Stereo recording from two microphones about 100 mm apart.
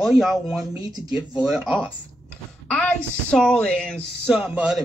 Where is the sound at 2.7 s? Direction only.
10° left (ahead or behind).